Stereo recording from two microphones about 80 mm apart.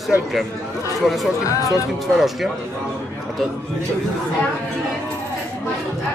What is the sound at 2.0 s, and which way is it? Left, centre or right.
Speech, centre.